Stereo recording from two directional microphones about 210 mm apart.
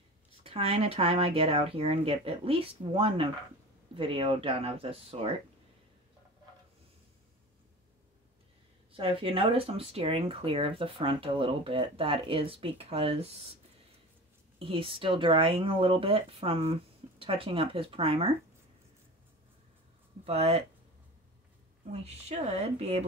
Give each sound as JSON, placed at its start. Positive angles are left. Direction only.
{"t": 0.4, "sound": "speech", "side_deg": -25}
{"t": 8.9, "sound": "speech", "side_deg": -25}
{"t": 14.6, "sound": "speech", "side_deg": -25}
{"t": 20.2, "sound": "speech", "side_deg": -30}
{"t": 21.9, "sound": "speech", "side_deg": -30}